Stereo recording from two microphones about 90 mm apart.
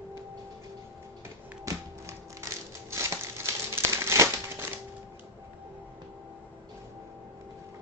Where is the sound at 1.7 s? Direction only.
35° right (ahead or behind).